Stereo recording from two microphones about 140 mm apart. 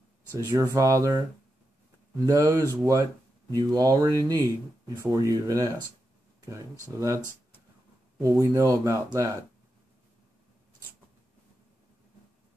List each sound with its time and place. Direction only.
0.5 s speech: 25° right (ahead or behind)
2.2 s speech: 25° right (ahead or behind)